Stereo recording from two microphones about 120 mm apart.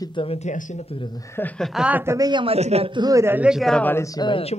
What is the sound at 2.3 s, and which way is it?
Speech, 40° right (ahead or behind).